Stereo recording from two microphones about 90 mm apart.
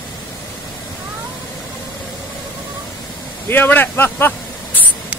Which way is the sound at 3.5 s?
20° left (ahead or behind).